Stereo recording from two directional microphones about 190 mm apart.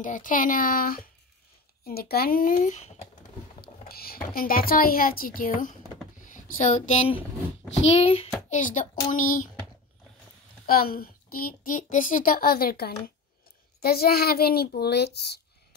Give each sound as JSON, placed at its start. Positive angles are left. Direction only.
{"t": 0.0, "sound": "a child's voice", "side_deg": 45}
{"t": 3.6, "sound": "a child's voice", "side_deg": 55}
{"t": 8.5, "sound": "a child's voice", "side_deg": 40}
{"t": 10.7, "sound": "a child's voice", "side_deg": 50}